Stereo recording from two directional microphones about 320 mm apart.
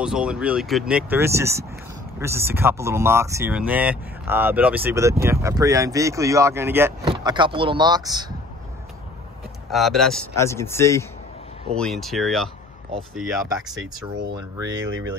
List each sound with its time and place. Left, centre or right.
0.0 s speech: centre
9.7 s speech: centre
13.1 s speech: centre
14.2 s speech: centre
14.9 s speech: right